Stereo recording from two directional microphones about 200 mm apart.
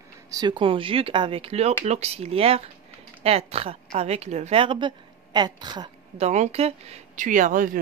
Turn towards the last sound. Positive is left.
turn(degrees=-45)  # may be behind; listen again after turning